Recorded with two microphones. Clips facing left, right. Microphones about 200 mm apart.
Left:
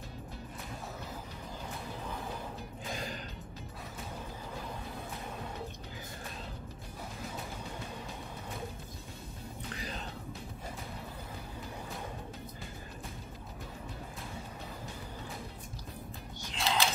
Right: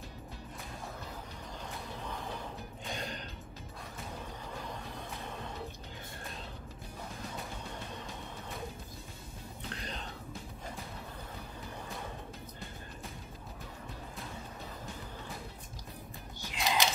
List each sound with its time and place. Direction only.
2.8 s gasp: centre (ahead or behind)
9.7 s music: 5° left (ahead or behind)
16.5 s a sound: 15° right (ahead or behind)